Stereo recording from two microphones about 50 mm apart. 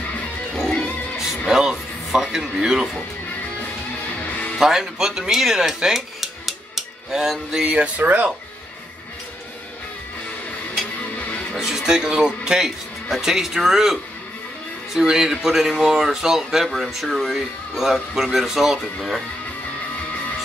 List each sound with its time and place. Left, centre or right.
0.7 s music: left
1.5 s music: centre
4.2 s music: left
4.6 s speech: centre
7.7 s speech: right
11.5 s speech: centre
15.0 s speech: centre